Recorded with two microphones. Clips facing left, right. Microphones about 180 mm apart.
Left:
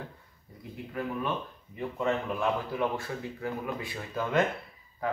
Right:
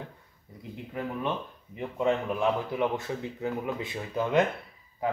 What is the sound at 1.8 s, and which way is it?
A man's voice, 20° right (ahead or behind).